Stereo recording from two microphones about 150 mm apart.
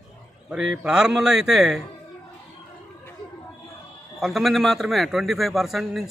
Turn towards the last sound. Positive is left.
turn(degrees=0)  # may be behind; listen again after turning